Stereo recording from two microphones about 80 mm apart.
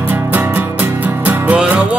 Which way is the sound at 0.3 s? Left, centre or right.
Right.